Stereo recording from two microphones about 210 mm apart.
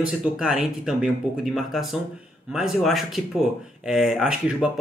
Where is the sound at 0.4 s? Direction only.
5° right (ahead or behind).